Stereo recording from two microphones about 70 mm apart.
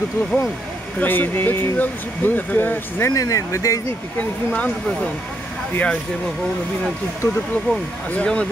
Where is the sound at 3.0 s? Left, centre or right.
Left.